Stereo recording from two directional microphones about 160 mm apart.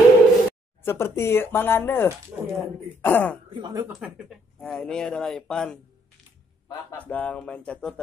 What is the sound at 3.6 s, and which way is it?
Speech, 25° right (ahead or behind).